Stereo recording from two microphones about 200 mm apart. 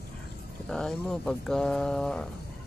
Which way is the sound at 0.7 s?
5° left (ahead or behind).